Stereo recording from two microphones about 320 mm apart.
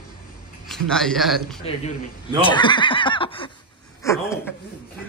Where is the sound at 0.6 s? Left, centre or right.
Centre.